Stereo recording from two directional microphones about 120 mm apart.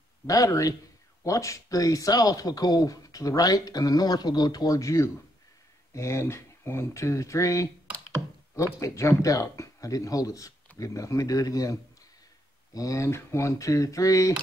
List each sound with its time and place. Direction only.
0.3 s speech: 30° left (ahead or behind)